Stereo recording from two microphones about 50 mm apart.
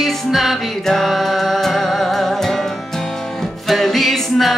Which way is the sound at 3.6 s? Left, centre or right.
Centre.